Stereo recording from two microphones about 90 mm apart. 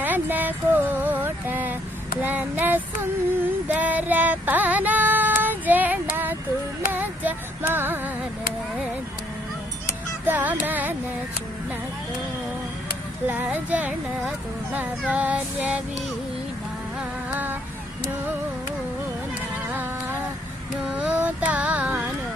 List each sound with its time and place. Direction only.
0.0 s a sound: 20° right (ahead or behind)
3.6 s female singing: 15° right (ahead or behind)
6.9 s music: 20° right (ahead or behind)
10.2 s music: 20° right (ahead or behind)
13.3 s speech: 15° right (ahead or behind)
19.7 s music: 20° right (ahead or behind)
20.9 s carnatic music: 15° right (ahead or behind)